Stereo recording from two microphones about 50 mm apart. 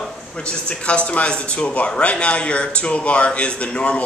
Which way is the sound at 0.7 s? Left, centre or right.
Left.